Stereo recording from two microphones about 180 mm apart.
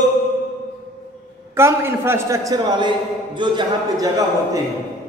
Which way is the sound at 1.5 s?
15° right (ahead or behind).